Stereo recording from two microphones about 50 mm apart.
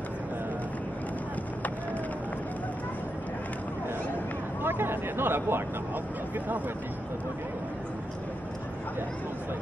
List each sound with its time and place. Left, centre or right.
4.6 s speech: right